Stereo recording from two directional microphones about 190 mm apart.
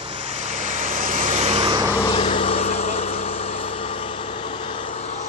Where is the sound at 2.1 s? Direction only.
30° left (ahead or behind).